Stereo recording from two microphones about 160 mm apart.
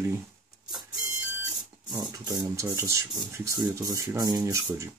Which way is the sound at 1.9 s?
25° right (ahead or behind).